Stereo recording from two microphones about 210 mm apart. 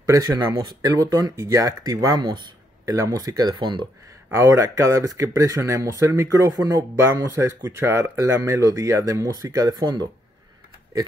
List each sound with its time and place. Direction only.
0.0 s speech: 15° right (ahead or behind)